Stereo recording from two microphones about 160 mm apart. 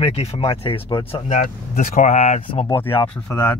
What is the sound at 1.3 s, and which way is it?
Speech, 50° left (ahead or behind).